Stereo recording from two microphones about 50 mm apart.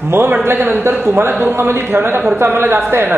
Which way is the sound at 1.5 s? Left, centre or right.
Right.